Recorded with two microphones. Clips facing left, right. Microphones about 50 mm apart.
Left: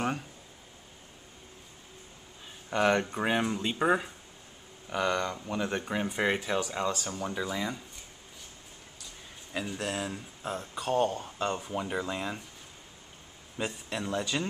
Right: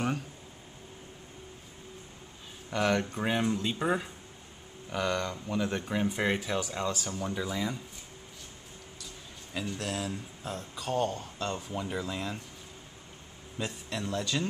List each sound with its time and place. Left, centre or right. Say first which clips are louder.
2.7 s speech: left 2 dB; centre
9.5 s speech: left 1 dB; centre
13.6 s speech: left 1 dB; centre